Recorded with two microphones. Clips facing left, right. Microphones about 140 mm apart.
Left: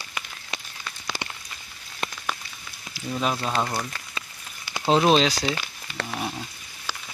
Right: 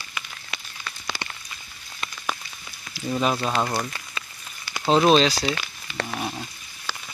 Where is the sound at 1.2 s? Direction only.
15° left (ahead or behind).